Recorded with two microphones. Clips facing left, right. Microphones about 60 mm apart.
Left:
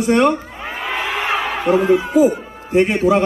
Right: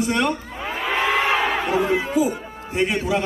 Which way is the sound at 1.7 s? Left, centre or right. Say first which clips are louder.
Left 6 dB; centre.